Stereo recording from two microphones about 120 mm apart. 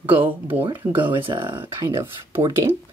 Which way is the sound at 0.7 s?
45° right (ahead or behind).